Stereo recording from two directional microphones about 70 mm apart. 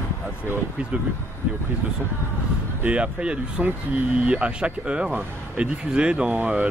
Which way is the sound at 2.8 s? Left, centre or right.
Centre.